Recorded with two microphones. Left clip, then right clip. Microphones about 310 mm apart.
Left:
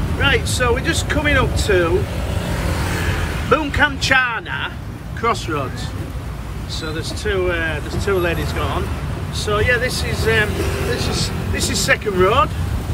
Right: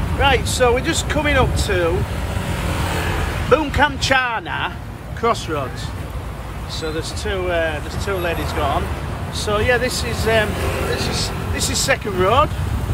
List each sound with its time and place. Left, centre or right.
0.2 s speech: centre
2.8 s vehicle: centre
3.4 s speech: centre
6.8 s speech: centre
9.4 s speech: centre